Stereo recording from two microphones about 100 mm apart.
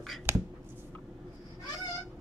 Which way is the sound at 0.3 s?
20° right (ahead or behind).